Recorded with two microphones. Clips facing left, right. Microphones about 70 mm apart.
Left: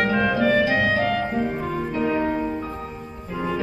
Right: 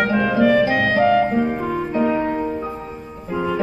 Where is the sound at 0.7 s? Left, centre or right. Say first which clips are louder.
Right 5 dB; centre.